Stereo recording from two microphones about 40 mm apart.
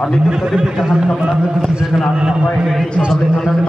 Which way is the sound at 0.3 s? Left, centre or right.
Centre.